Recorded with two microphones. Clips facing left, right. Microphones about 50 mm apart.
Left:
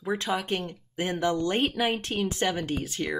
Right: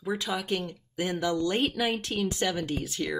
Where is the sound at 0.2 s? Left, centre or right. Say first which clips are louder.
Left 2 dB; left.